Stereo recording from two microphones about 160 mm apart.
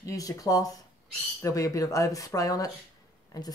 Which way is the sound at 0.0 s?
20° left (ahead or behind).